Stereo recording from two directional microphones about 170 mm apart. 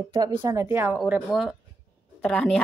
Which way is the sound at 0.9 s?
5° right (ahead or behind).